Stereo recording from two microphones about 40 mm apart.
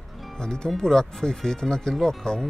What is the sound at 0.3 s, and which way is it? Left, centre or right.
Speech, centre.